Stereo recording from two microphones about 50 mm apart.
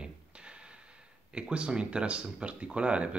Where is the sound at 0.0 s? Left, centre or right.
Centre.